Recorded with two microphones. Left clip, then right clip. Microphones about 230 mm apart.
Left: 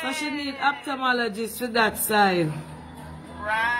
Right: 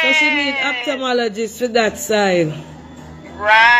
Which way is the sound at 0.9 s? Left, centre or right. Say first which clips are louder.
Right 6 dB; centre.